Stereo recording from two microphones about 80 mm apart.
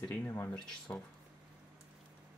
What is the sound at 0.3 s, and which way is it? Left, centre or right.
Speech, left.